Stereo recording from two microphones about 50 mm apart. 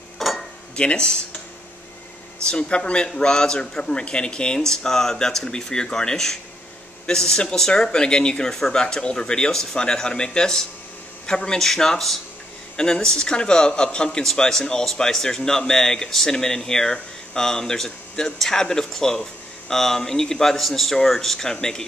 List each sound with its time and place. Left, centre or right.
0.2 s cutlery: centre
0.7 s speech: centre
2.4 s speech: centre